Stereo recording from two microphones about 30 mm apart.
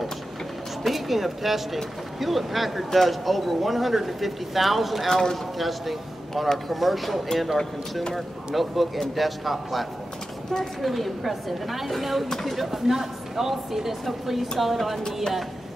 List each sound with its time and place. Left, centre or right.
0.8 s speech: centre
5.1 s speech: centre
5.6 s speech: centre
8.5 s speech: centre